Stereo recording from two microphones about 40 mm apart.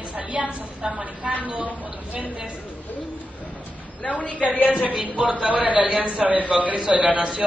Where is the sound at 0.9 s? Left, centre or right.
Right.